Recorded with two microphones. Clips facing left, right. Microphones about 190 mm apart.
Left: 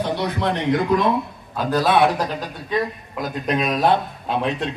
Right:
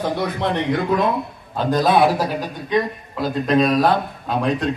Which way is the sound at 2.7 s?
30° right (ahead or behind).